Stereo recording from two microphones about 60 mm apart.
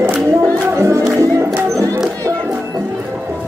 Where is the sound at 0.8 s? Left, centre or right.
Right.